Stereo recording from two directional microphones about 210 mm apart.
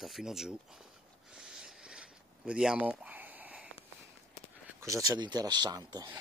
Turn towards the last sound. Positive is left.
turn(degrees=-20)  # may be behind; listen again after turning